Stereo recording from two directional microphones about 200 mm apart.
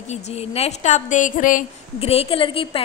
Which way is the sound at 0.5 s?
35° left (ahead or behind).